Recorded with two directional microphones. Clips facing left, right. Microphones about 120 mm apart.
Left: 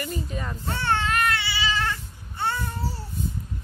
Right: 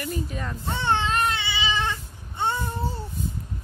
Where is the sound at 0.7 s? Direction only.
20° right (ahead or behind).